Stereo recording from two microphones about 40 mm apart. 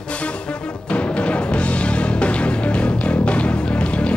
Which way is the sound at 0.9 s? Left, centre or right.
Left.